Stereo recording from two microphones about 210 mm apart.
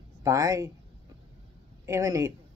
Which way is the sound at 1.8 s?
15° right (ahead or behind).